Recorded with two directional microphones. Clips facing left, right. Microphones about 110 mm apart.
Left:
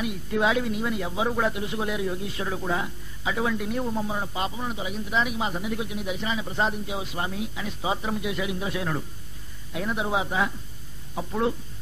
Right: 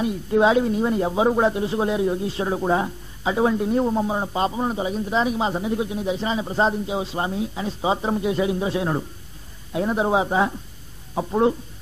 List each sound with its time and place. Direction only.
0.0 s speech: 30° right (ahead or behind)